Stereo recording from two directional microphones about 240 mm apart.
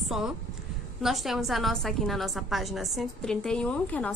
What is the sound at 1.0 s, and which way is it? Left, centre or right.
A woman's voice, centre.